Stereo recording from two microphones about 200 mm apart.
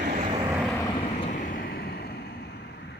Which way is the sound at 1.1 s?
35° left (ahead or behind).